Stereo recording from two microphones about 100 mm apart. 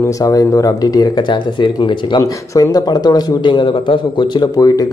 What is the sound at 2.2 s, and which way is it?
Speech, 35° left (ahead or behind).